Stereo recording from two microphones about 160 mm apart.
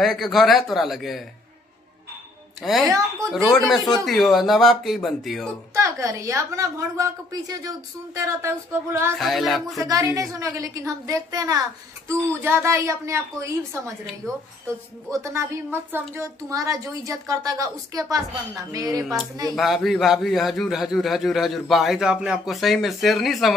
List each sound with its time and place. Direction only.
0.0 s a man's voice: centre (ahead or behind)
2.6 s a man's voice: centre (ahead or behind)
5.8 s a woman's voice: 20° right (ahead or behind)
9.2 s a man's voice: centre (ahead or behind)
9.8 s a woman's voice: 20° right (ahead or behind)
15.0 s a woman's voice: 20° right (ahead or behind)
19.5 s a man's voice: centre (ahead or behind)